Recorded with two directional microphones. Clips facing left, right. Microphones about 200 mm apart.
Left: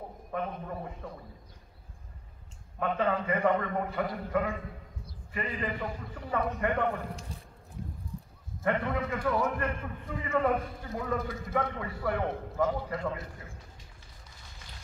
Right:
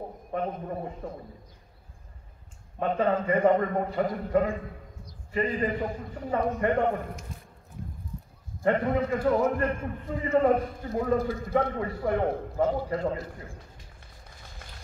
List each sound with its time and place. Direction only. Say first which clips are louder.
0.3 s a man's voice: right 4 dB; 30° right (ahead or behind)
2.8 s a man's voice: right 4 dB; 35° right (ahead or behind)
7.3 s a sound: right 1 dB; 35° left (ahead or behind)
8.6 s a man's voice: right 5 dB; 35° right (ahead or behind)